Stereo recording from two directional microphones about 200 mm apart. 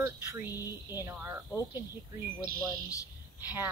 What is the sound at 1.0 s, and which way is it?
Speech, 10° right (ahead or behind).